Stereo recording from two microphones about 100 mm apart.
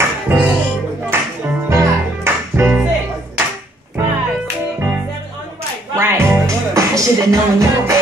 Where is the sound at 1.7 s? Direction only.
25° right (ahead or behind).